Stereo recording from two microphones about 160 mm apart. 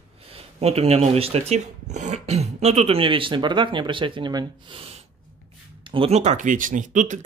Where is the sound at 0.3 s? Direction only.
40° right (ahead or behind).